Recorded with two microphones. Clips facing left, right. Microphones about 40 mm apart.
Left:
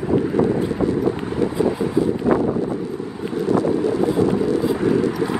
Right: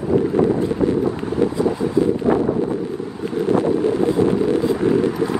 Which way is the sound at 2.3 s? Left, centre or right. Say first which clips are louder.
Right 1 dB; right.